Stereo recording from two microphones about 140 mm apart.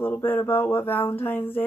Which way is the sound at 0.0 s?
15° left (ahead or behind).